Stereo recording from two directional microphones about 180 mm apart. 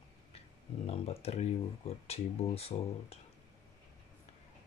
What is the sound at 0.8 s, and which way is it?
Speech, 35° left (ahead or behind).